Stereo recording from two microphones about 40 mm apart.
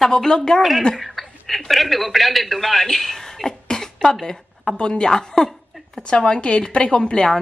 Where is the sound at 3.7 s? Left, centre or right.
Centre.